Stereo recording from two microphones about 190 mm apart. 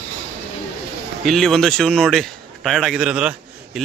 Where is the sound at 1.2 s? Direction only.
Centre (ahead or behind).